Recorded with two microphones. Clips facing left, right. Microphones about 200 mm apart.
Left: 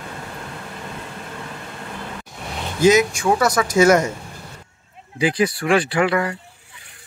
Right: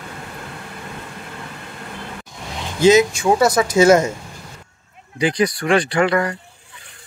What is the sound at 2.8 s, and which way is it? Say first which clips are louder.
A man's voice: right 2 dB; 25° right (ahead or behind).